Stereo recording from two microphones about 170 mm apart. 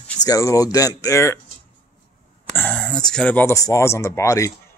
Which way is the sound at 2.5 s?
10° left (ahead or behind).